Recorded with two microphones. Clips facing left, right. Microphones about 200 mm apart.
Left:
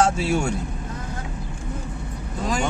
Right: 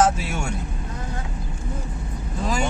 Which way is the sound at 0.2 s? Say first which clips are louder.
Left 7 dB; 30° left (ahead or behind).